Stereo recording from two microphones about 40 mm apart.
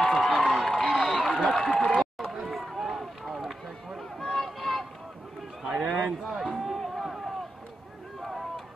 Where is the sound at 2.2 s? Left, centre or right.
Centre.